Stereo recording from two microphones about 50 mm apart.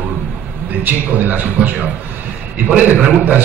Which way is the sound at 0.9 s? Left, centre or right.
Right.